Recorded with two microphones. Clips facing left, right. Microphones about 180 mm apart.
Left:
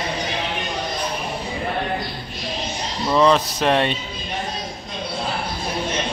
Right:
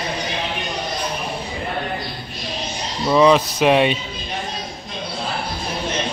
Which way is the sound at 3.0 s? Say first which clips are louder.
Right 3 dB; 5° right (ahead or behind).